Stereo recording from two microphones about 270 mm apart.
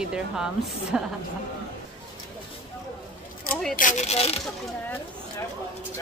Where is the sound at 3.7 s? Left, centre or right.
Left.